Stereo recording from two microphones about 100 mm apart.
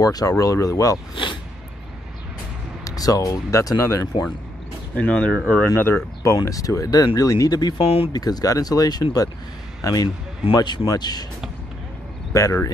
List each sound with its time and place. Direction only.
0.0 s speech: 40° left (ahead or behind)
1.1 s speech: 55° left (ahead or behind)
2.8 s speech: 35° left (ahead or behind)
4.9 s speech: 10° left (ahead or behind)
5.7 s speech: 25° left (ahead or behind); by 7.8 s 45° left (ahead or behind)
7.8 s speech: 75° left (ahead or behind)
8.1 s speech: 40° left (ahead or behind)
12.4 s speech: 35° left (ahead or behind)